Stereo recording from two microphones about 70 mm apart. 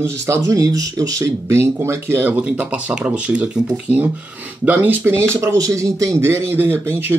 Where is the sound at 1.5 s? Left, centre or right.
Right.